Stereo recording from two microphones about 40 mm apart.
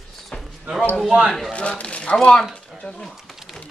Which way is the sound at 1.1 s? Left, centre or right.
Centre.